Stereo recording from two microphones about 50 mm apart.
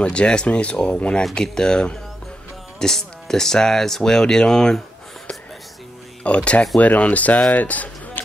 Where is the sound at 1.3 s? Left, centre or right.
Centre.